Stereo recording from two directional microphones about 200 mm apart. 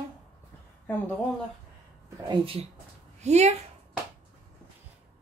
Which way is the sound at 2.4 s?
25° right (ahead or behind).